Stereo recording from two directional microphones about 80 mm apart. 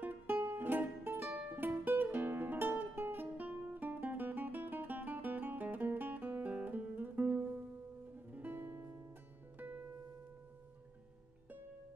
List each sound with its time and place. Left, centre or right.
0.0 s music: right